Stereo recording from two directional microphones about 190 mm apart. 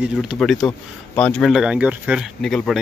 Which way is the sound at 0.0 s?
5° right (ahead or behind).